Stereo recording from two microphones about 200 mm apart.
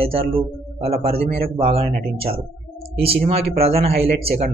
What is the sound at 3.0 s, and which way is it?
A man's voice, 30° right (ahead or behind).